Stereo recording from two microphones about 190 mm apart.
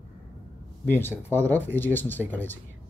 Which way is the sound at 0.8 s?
10° left (ahead or behind).